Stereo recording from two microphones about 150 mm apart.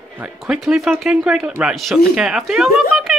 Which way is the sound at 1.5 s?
5° right (ahead or behind).